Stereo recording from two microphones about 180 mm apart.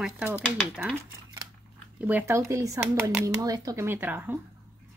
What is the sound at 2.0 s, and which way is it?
Speech, 10° right (ahead or behind).